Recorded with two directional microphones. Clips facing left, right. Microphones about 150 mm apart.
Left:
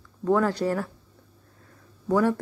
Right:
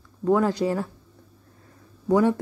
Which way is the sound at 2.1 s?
15° right (ahead or behind).